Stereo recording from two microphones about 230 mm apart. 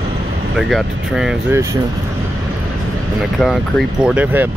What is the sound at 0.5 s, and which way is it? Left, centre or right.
Speech, centre.